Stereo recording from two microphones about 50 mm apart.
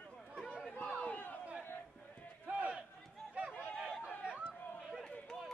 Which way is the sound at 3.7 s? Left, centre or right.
Centre.